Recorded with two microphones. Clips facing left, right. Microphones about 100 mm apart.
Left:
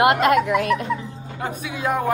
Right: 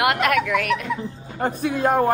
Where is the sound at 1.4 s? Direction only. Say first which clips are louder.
Right 6 dB; 45° right (ahead or behind).